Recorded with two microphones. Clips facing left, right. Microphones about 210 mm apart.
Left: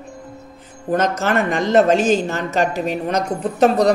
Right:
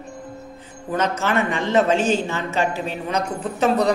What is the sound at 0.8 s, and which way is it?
A man's voice, 45° left (ahead or behind).